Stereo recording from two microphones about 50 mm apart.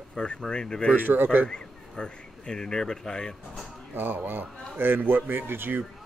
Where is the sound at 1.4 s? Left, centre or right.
Centre.